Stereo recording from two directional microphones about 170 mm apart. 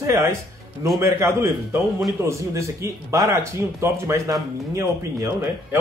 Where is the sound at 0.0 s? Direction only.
15° right (ahead or behind).